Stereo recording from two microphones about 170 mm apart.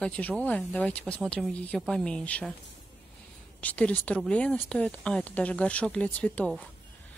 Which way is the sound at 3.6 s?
10° left (ahead or behind).